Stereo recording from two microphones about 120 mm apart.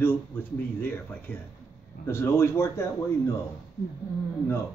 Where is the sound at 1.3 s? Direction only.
15° left (ahead or behind).